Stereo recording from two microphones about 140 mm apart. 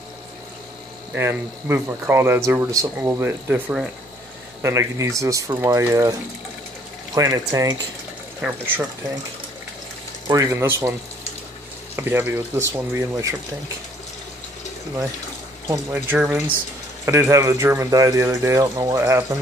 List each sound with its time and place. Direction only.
1.1 s speech: 15° right (ahead or behind)
7.2 s speech: 25° right (ahead or behind)
8.4 s speech: 10° right (ahead or behind)
10.2 s speech: 25° right (ahead or behind)
15.9 s speech: 15° right (ahead or behind)